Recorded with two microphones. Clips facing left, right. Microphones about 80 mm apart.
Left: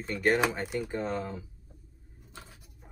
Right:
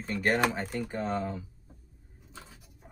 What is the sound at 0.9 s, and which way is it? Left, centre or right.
Speech, centre.